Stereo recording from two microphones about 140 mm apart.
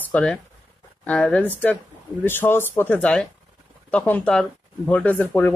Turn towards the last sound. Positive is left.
turn(degrees=10)  # may be behind; listen again after turning